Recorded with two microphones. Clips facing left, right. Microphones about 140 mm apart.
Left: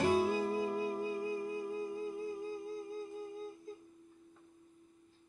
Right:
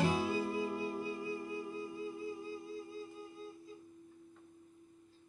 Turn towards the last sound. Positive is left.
turn(degrees=45)  # may be behind; listen again after turning